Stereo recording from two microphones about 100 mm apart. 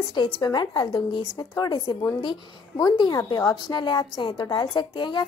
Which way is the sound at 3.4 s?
40° left (ahead or behind).